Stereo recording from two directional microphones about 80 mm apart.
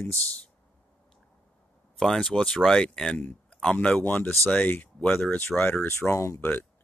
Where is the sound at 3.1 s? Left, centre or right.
Centre.